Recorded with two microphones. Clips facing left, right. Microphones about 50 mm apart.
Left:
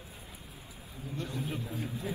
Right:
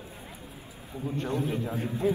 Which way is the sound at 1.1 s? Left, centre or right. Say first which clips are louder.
Right 7 dB; right.